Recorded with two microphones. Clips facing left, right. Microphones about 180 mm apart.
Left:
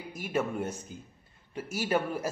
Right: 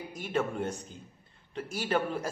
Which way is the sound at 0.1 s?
10° left (ahead or behind).